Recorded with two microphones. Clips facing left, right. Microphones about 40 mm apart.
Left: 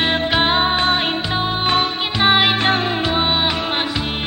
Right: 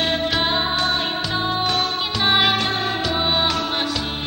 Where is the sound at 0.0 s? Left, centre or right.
Left.